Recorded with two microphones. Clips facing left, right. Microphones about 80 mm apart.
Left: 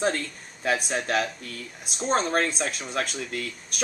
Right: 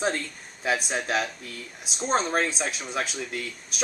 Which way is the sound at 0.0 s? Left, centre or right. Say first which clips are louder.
Left 1 dB; centre.